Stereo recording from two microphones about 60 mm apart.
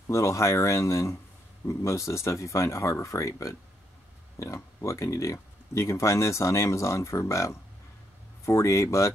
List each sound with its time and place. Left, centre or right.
0.0 s speech: left